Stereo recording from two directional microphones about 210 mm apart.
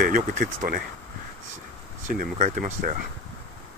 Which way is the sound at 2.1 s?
40° right (ahead or behind).